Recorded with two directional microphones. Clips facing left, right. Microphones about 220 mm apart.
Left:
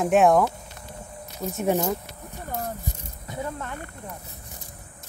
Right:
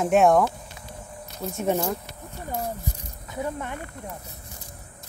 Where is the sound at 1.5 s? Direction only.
Centre (ahead or behind).